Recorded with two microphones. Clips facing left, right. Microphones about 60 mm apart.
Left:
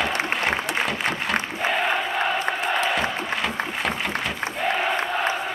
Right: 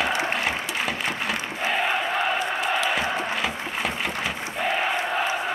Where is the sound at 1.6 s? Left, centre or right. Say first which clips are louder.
Even; centre.